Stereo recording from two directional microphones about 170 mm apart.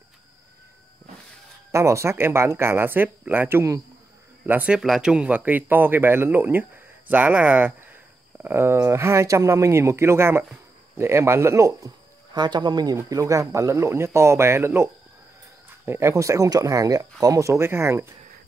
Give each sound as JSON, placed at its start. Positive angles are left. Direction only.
{"t": 1.7, "sound": "speech", "side_deg": -15}